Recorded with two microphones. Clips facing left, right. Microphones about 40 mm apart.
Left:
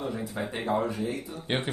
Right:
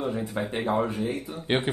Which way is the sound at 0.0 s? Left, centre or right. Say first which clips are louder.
Right 3 dB; right.